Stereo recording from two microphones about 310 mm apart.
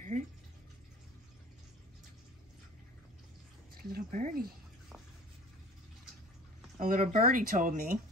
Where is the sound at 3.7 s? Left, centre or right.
Right.